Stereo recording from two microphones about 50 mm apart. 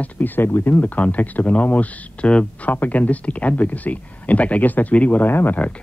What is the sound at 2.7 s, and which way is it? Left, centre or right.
Speech, left.